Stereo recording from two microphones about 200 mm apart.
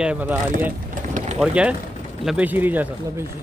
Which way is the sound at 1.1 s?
35° right (ahead or behind).